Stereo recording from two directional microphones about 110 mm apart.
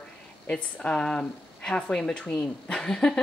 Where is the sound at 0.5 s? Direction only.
10° left (ahead or behind).